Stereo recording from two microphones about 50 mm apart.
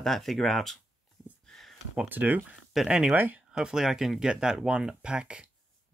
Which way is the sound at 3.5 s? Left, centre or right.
Centre.